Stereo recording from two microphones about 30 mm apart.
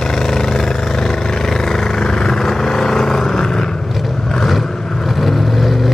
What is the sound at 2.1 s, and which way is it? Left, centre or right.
Vehicle, centre.